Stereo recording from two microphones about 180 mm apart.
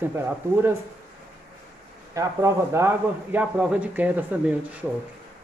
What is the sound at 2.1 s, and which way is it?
A man's voice, 15° right (ahead or behind).